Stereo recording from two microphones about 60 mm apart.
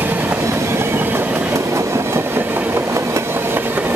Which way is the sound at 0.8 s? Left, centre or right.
Right.